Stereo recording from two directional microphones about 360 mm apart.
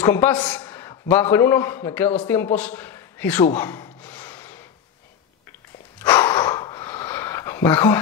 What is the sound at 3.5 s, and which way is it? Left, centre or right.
Rub, centre.